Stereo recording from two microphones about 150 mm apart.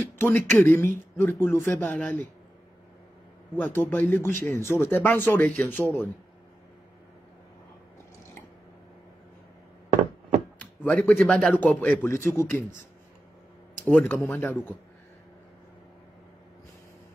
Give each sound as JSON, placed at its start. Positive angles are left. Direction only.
{"t": 0.2, "sound": "speech", "side_deg": 15}
{"t": 3.5, "sound": "speech", "side_deg": 15}
{"t": 10.6, "sound": "speech", "side_deg": 10}
{"t": 13.9, "sound": "speech", "side_deg": 15}